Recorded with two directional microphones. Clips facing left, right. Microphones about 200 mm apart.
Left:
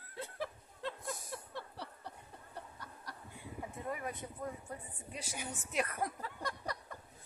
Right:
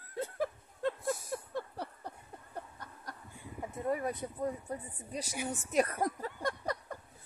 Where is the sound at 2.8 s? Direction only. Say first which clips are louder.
Right 3 dB; 50° right (ahead or behind).